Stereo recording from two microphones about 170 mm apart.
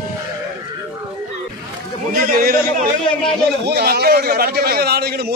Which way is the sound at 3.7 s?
65° right (ahead or behind).